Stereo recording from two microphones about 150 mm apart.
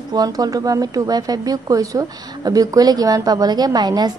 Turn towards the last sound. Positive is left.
turn(degrees=-25)  # may be behind; listen again after turning